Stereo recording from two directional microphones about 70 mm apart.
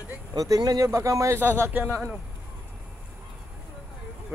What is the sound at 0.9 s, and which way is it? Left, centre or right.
Speech, right.